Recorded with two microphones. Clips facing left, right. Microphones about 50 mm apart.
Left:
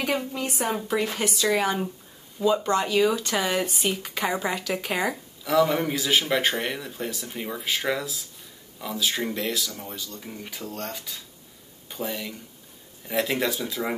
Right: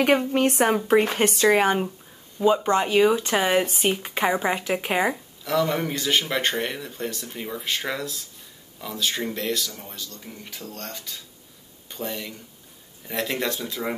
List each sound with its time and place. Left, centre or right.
0.3 s a woman's voice: right
5.4 s a man's voice: centre